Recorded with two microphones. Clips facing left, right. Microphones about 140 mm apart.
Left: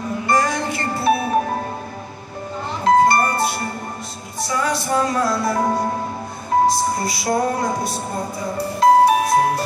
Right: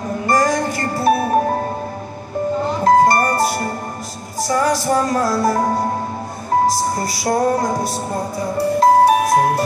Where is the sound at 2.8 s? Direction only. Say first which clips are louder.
Right 1 dB; 40° right (ahead or behind).